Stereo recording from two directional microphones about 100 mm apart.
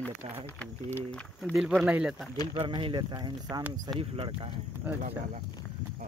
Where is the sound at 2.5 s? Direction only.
60° right (ahead or behind); by 3.6 s 40° right (ahead or behind).